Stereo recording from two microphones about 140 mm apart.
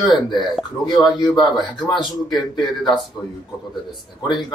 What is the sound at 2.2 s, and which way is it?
Speech, centre (ahead or behind).